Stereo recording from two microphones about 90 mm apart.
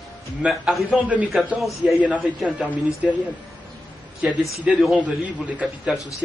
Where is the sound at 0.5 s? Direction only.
Centre (ahead or behind).